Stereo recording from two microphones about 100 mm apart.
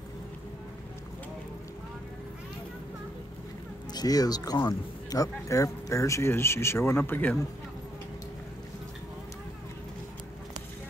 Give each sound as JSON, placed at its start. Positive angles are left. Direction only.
{"t": 3.9, "sound": "speech", "side_deg": 40}